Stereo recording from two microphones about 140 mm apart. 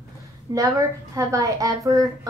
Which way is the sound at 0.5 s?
25° right (ahead or behind).